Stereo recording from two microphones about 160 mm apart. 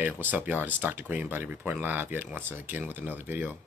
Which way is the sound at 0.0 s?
10° right (ahead or behind).